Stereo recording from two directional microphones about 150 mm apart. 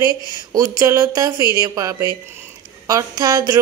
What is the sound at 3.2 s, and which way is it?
Speech, 25° right (ahead or behind).